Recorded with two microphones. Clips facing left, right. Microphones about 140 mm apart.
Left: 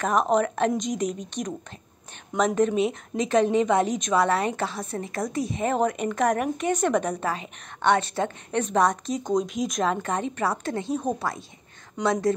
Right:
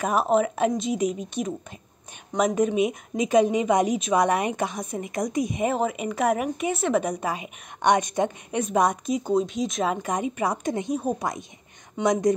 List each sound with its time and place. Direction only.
0.0 s a woman's voice: 5° right (ahead or behind)
9.8 s a woman's voice: 10° right (ahead or behind)